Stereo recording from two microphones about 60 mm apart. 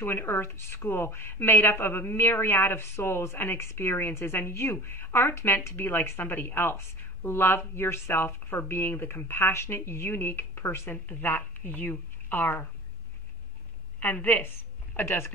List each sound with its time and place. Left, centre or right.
0.0 s a woman's voice: left
13.9 s a woman's voice: left